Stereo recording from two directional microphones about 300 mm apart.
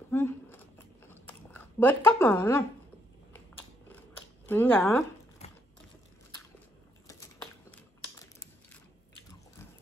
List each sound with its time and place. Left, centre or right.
0.1 s a sound: centre
1.1 s chewing: centre
4.5 s speech: centre
5.4 s typing: left